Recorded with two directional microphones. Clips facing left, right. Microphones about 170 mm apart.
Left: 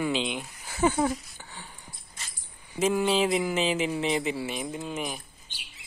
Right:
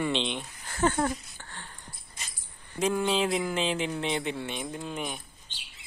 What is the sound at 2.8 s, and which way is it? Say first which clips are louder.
Speech: left 2 dB; 5° left (ahead or behind).